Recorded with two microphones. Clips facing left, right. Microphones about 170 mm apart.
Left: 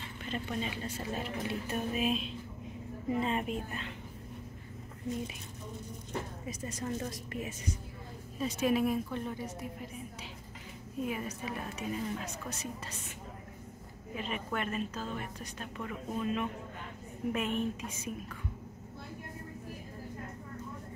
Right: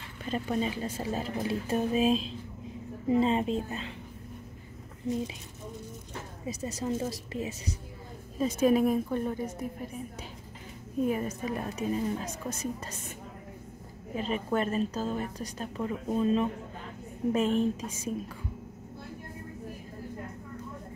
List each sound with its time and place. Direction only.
0.3 s a woman's voice: 35° right (ahead or behind)
6.4 s a woman's voice: 25° right (ahead or behind)
8.4 s a woman's voice: 40° right (ahead or behind)
11.1 s a woman's voice: 40° right (ahead or behind)
14.1 s a woman's voice: 35° right (ahead or behind)